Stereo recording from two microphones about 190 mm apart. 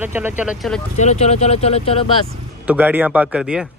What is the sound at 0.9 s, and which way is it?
Speech, 35° left (ahead or behind).